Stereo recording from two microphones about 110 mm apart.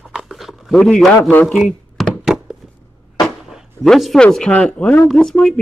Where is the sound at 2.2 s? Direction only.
5° right (ahead or behind).